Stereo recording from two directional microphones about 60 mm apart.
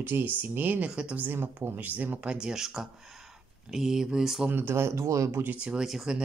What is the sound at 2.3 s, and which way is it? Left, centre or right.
Speech, centre.